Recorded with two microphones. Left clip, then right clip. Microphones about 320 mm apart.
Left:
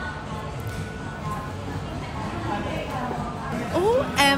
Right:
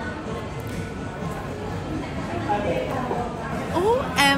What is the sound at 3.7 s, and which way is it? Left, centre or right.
Music, centre.